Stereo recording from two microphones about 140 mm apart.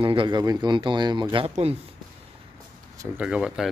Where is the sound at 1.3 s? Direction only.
45° right (ahead or behind).